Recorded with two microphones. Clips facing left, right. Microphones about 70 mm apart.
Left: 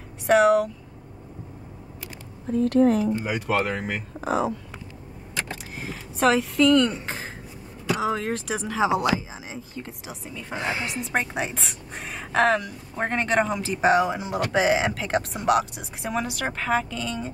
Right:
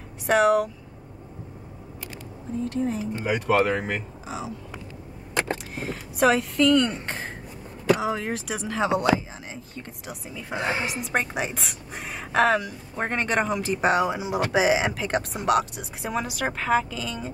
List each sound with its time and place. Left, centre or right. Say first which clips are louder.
0.3 s a woman's voice: left 2 dB; centre
2.5 s speech: left 8 dB; left
3.3 s a woman's voice: right 3 dB; centre
4.2 s speech: left 9 dB; left
5.8 s a woman's voice: right 1 dB; centre
10.6 s speech: right 2 dB; right
10.9 s a woman's voice: even; centre